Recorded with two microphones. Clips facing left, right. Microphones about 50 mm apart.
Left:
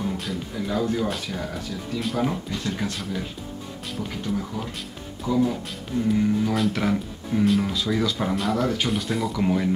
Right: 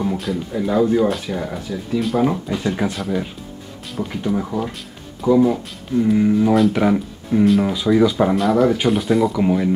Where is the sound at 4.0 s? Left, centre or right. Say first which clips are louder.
Right 7 dB; right.